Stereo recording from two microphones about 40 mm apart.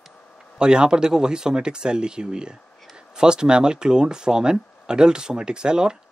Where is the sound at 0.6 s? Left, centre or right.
Right.